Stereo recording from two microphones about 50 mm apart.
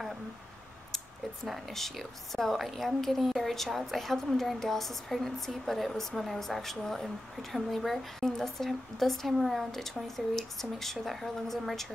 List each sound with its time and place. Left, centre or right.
0.9 s speech: centre